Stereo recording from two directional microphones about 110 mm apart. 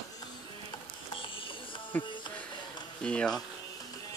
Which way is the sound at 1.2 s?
50° left (ahead or behind).